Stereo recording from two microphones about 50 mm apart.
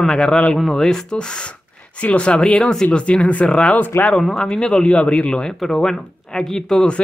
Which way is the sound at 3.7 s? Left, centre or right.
Left.